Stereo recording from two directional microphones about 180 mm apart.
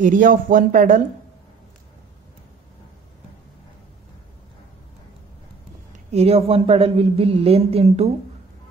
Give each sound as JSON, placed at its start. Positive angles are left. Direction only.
{"t": 0.0, "sound": "speech", "side_deg": -45}
{"t": 6.1, "sound": "a woman's voice", "side_deg": -35}